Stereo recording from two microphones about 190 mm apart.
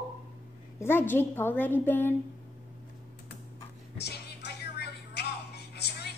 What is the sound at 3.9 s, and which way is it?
Music, 60° left (ahead or behind).